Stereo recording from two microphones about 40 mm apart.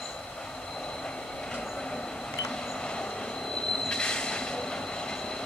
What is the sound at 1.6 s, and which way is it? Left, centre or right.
Train, centre.